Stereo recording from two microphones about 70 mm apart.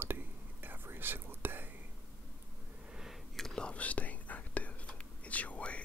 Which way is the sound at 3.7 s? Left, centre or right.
Left.